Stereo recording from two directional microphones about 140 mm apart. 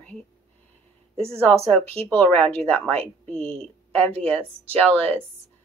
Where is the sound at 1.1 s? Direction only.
45° right (ahead or behind).